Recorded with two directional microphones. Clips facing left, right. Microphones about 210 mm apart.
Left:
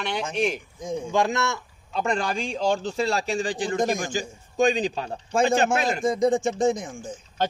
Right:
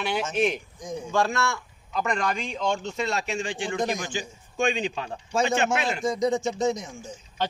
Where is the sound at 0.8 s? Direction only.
20° left (ahead or behind).